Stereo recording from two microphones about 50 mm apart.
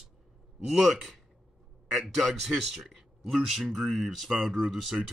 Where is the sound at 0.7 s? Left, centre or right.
Centre.